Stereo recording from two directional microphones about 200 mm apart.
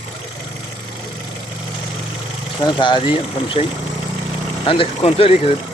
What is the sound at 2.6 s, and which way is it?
Speech, 20° left (ahead or behind).